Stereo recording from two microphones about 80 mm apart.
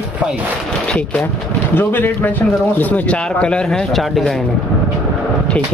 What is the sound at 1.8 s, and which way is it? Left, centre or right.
Speech, left.